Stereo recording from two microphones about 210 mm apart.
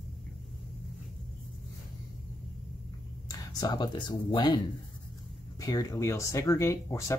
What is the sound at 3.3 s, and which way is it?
Speech, 20° left (ahead or behind).